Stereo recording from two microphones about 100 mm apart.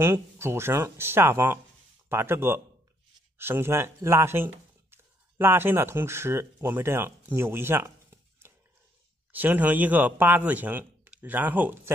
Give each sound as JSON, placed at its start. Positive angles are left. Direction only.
{"t": 0.0, "sound": "speech", "side_deg": -25}